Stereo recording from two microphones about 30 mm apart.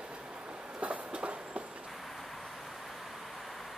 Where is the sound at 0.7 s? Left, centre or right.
Right.